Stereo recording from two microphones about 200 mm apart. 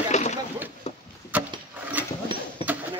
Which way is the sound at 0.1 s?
35° left (ahead or behind).